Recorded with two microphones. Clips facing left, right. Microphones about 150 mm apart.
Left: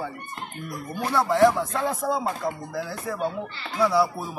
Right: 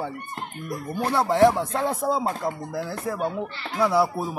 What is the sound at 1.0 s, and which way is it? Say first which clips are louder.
Speech: right 1 dB; 20° right (ahead or behind).